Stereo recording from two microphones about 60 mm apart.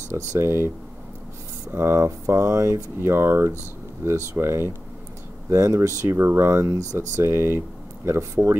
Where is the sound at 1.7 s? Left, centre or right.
Right.